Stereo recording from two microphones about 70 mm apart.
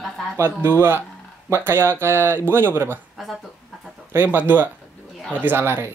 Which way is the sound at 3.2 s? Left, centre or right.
Centre.